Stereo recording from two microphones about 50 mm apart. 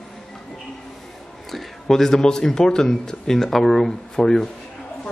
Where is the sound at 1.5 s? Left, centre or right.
Centre.